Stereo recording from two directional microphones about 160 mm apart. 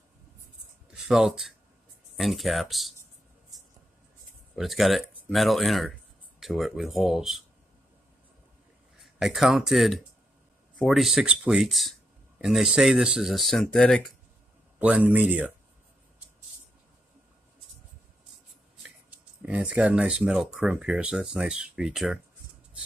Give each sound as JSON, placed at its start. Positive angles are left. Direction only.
{"t": 0.9, "sound": "speech", "side_deg": -5}
{"t": 4.6, "sound": "speech", "side_deg": 0}
{"t": 9.0, "sound": "speech", "side_deg": 0}
{"t": 14.8, "sound": "speech", "side_deg": -10}
{"t": 19.4, "sound": "speech", "side_deg": -10}